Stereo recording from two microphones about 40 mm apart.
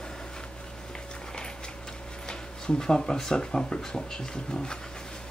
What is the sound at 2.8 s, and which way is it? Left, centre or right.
Speech, centre.